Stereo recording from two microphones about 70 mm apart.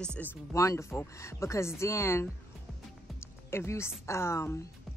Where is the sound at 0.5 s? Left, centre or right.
Left.